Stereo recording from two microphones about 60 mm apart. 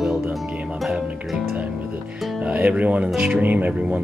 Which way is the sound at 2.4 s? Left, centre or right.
Centre.